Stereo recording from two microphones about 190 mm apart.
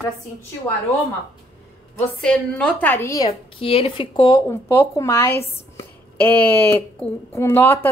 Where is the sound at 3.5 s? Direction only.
30° left (ahead or behind).